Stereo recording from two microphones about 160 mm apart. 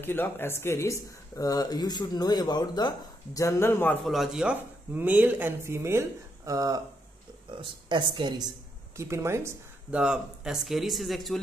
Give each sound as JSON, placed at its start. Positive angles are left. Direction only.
{"t": 0.0, "sound": "speech", "side_deg": 15}
{"t": 4.0, "sound": "speech", "side_deg": 0}
{"t": 8.9, "sound": "speech", "side_deg": -15}
{"t": 9.9, "sound": "a man's voice", "side_deg": -5}